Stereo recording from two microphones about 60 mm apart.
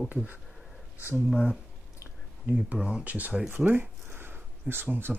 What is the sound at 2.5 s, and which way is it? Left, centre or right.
Speech, centre.